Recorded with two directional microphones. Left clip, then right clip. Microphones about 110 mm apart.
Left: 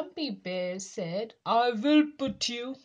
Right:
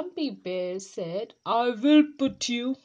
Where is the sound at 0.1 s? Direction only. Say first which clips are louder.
Right 3 dB; 30° right (ahead or behind).